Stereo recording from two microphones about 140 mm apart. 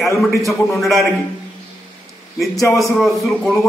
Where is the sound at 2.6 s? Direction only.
25° left (ahead or behind).